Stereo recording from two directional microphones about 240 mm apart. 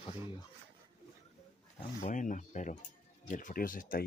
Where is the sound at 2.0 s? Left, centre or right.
Left.